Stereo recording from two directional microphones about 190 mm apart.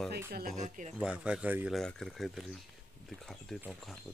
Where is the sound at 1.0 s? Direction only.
5° right (ahead or behind).